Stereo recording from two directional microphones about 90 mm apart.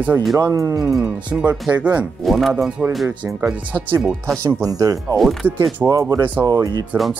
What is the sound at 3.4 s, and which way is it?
Speech, 10° right (ahead or behind).